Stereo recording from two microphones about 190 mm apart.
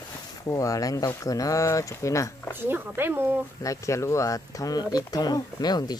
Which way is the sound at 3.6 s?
15° left (ahead or behind).